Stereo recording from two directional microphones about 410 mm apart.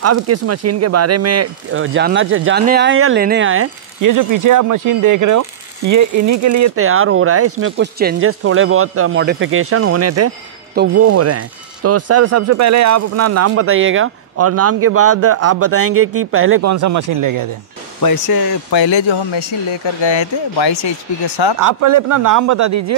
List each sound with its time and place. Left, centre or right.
0.0 s speech: right
4.0 s speech: right
16.7 s a man's voice: right
18.0 s speech: left
21.5 s a man's voice: right